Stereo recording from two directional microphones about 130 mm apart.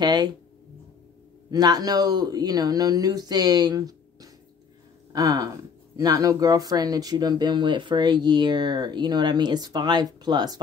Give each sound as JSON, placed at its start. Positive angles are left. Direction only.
{"t": 0.0, "sound": "speech", "side_deg": -30}
{"t": 1.5, "sound": "speech", "side_deg": -30}